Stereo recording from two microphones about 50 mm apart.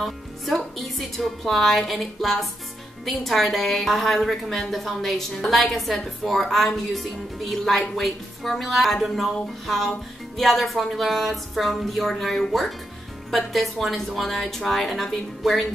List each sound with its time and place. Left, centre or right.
0.0 s speech: centre